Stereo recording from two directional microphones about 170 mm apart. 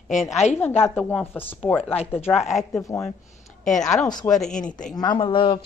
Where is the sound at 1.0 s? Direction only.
10° left (ahead or behind).